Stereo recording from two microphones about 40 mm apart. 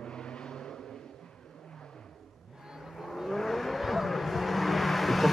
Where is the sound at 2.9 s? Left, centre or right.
Centre.